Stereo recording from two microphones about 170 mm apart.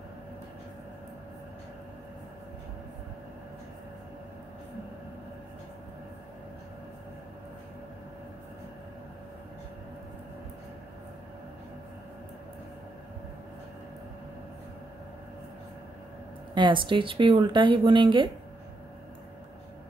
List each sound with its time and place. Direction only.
16.5 s speech: 30° right (ahead or behind)